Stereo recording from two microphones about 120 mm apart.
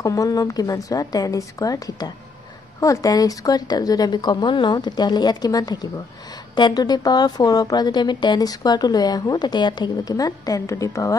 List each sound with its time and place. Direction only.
0.0 s a woman's voice: 30° left (ahead or behind)